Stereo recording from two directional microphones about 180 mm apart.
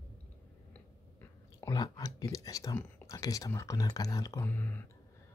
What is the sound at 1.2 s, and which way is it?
Speech, 15° left (ahead or behind).